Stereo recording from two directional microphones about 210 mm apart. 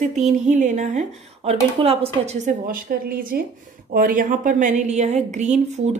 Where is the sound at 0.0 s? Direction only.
35° right (ahead or behind).